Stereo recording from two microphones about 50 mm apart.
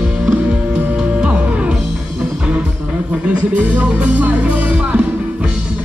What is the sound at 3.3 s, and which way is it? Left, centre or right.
Music, right.